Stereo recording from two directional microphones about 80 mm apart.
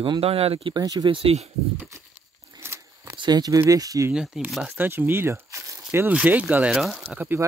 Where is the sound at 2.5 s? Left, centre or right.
Right.